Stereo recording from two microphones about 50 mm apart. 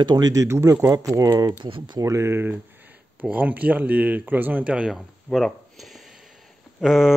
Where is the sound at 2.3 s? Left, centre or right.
Right.